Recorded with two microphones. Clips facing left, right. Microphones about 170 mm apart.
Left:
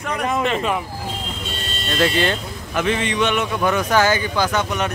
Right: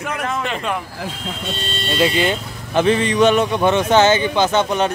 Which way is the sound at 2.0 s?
15° right (ahead or behind).